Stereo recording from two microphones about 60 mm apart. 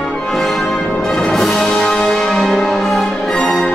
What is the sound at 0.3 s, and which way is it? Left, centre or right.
Music, centre.